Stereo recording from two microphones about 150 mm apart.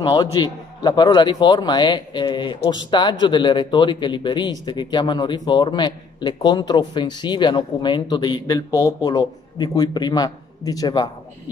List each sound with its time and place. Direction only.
0.0 s a man's voice: 25° left (ahead or behind)